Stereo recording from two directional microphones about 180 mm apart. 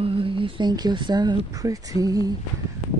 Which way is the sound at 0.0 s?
30° right (ahead or behind).